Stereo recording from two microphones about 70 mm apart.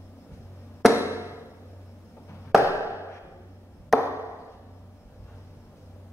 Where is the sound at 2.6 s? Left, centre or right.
Left.